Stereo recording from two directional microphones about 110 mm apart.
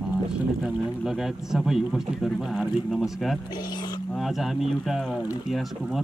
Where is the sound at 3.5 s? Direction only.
40° left (ahead or behind).